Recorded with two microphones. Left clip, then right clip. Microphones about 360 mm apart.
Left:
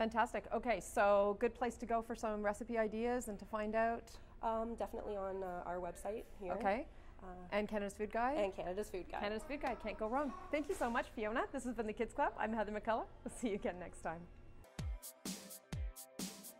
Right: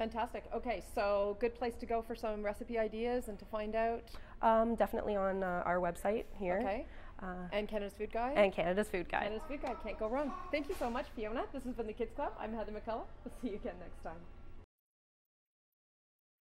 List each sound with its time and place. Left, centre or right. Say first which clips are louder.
0.0 s speech: left 2 dB; left
4.4 s a woman's voice: right 10 dB; right
6.6 s speech: even; left
8.4 s a woman's voice: right 8 dB; right
9.3 s speech: right 1 dB; left